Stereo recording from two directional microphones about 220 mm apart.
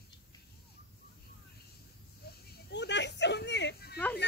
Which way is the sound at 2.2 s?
45° left (ahead or behind).